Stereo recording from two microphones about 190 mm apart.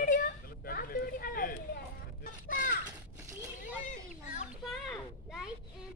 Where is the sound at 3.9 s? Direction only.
40° left (ahead or behind).